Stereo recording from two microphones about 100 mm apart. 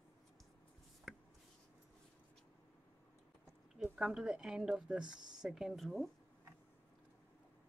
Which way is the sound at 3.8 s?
5° right (ahead or behind).